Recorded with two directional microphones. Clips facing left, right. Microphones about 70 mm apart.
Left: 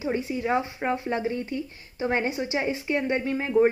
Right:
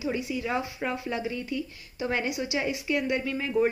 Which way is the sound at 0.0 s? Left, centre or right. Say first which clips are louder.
Left 3 dB; left.